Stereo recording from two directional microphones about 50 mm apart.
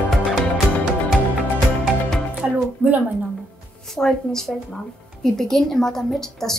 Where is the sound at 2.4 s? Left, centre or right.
Right.